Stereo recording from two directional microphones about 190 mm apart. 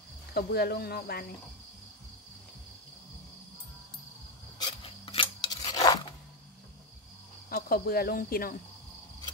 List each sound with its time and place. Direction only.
0.3 s speech: 60° left (ahead or behind)
4.6 s scissors: 25° left (ahead or behind)
7.4 s speech: 50° left (ahead or behind)